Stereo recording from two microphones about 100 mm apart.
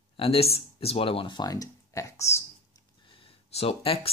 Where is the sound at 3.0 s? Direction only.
60° left (ahead or behind).